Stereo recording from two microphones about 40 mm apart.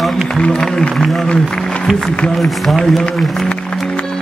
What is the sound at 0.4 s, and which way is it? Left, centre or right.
Speech, left.